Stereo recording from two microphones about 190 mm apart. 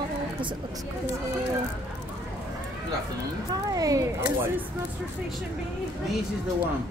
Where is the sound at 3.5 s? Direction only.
20° right (ahead or behind).